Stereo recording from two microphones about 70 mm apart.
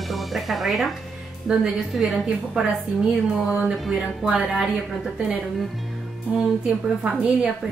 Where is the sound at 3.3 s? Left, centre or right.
Right.